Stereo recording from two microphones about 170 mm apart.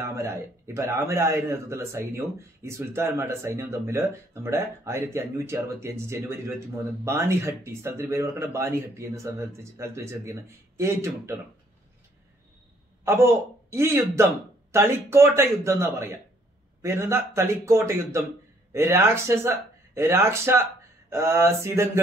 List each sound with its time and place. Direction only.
0.0 s a man's voice: 15° right (ahead or behind)
13.0 s a man's voice: 15° right (ahead or behind)